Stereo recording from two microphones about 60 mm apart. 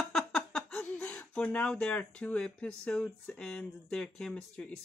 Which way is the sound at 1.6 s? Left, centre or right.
Centre.